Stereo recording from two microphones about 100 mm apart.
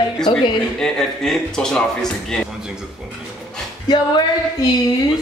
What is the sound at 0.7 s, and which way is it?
Speech, 5° left (ahead or behind).